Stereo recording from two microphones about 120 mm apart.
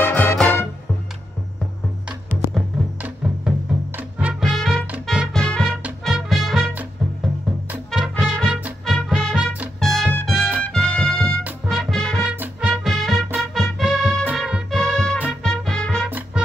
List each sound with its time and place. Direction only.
0.0 s music: 15° left (ahead or behind)
3.0 s music: 10° right (ahead or behind)
7.7 s music: 5° right (ahead or behind)
8.8 s music: centre (ahead or behind)
11.4 s music: 10° right (ahead or behind)
12.3 s music: 10° right (ahead or behind)